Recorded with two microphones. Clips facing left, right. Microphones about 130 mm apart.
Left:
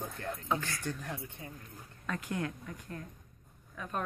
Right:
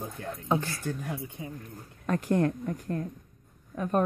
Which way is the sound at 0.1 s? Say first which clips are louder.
Right 2 dB; 5° right (ahead or behind).